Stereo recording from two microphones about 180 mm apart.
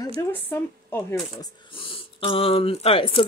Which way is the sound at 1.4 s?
30° left (ahead or behind).